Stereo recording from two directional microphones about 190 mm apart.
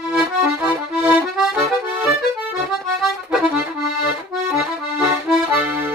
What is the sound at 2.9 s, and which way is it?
Accordion, centre (ahead or behind).